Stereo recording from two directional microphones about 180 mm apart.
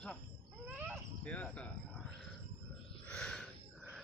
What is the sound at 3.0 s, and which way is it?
Gasp, 5° left (ahead or behind).